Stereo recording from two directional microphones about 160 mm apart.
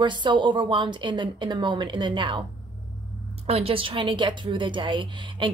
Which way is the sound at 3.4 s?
35° right (ahead or behind).